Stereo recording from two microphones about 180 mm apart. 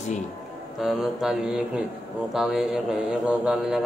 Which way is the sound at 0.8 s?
Centre (ahead or behind).